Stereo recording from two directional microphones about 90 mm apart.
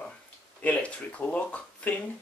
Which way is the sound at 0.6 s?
15° left (ahead or behind).